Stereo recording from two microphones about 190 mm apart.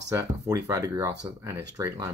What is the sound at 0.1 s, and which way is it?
Speech, 20° right (ahead or behind).